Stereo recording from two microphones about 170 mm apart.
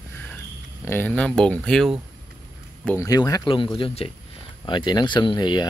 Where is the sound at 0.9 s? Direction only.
10° left (ahead or behind).